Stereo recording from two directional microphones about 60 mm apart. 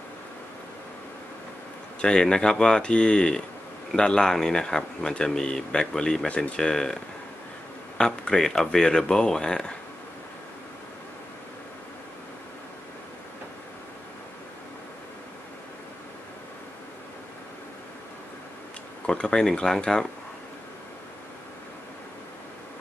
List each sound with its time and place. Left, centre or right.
2.0 s speech: centre
8.0 s speech: centre
19.0 s speech: centre